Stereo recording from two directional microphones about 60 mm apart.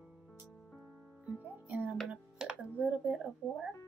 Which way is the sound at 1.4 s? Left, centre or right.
Right.